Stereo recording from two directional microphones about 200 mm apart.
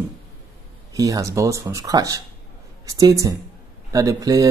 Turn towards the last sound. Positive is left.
turn(degrees=-15)  # may be behind; listen again after turning